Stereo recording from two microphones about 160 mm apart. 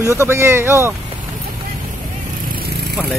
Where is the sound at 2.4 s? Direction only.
80° right.